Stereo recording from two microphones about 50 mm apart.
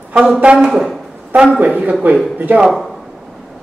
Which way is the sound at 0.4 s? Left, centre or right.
Right.